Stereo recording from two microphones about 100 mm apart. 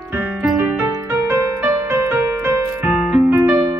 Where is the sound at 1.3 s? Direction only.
25° right (ahead or behind).